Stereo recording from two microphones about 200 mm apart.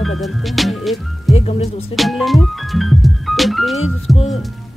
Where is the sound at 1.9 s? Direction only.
Centre (ahead or behind).